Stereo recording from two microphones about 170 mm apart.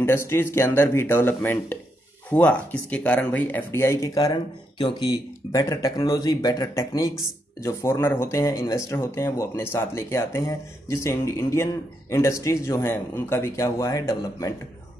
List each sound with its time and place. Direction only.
0.0 s speech: 15° left (ahead or behind)